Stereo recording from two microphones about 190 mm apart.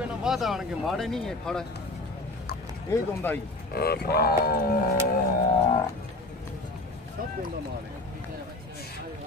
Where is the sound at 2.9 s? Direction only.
15° left (ahead or behind).